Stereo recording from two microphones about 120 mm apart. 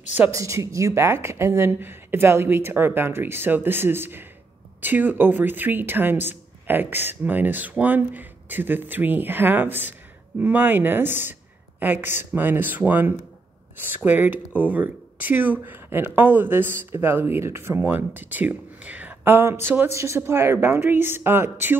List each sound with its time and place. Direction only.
0.3 s speech: 25° right (ahead or behind)